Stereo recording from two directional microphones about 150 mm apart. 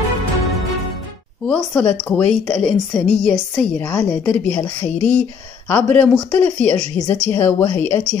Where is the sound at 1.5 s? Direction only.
10° left (ahead or behind).